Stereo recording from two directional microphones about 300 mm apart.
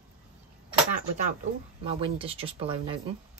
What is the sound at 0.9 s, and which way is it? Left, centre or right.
Speech, right.